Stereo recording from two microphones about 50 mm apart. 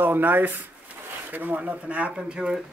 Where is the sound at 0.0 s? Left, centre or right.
Right.